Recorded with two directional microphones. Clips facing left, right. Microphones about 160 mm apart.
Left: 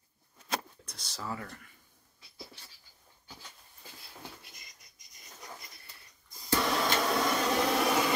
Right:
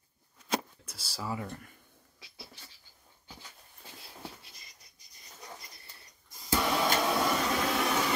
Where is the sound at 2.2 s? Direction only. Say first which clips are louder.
Right 6 dB; 90° right.